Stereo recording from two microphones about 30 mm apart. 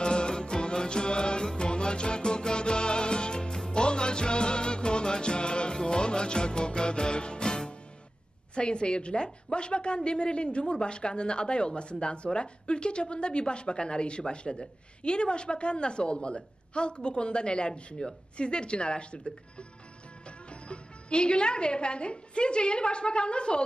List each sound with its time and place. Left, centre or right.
0.0 s music: left
8.5 s a woman's voice: left